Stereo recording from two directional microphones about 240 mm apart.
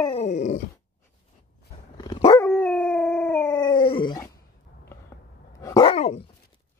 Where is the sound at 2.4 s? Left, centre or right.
Centre.